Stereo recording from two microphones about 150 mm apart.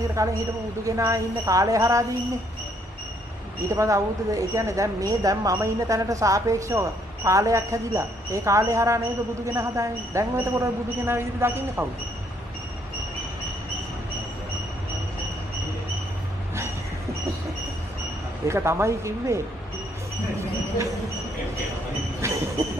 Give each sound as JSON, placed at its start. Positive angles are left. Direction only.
{"t": 0.1, "sound": "speech", "side_deg": -20}
{"t": 3.6, "sound": "speech", "side_deg": -20}
{"t": 18.5, "sound": "speech", "side_deg": -20}